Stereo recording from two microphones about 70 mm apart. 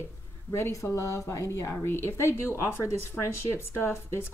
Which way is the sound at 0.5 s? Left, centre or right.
Left.